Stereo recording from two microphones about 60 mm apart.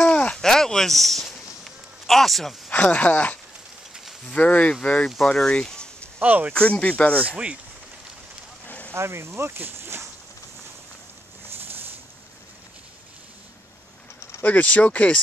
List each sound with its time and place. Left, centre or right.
0.0 s a sound: centre
2.0 s speech: centre
2.7 s speech: left
4.4 s speech: centre
6.2 s speech: right
6.5 s speech: centre
7.2 s speech: right
8.6 s a sound: left
8.9 s speech: right
14.4 s speech: left